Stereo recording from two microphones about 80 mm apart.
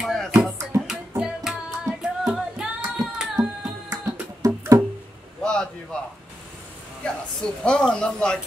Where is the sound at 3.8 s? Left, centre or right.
Right.